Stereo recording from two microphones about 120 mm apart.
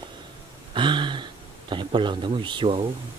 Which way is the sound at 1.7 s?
45° right (ahead or behind).